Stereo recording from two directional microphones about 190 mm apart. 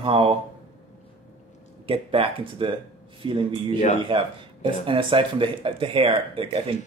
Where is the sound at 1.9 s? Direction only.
30° right (ahead or behind).